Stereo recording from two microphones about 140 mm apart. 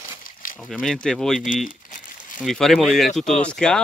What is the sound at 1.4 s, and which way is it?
Crumpling, 70° left (ahead or behind).